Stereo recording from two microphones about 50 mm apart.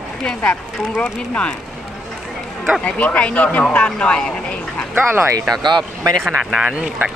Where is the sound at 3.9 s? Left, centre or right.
Centre.